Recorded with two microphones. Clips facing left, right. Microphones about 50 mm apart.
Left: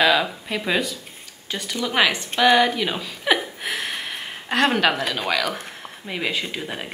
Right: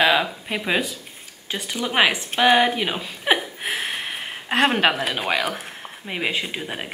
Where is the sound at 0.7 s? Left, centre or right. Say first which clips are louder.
Even; centre.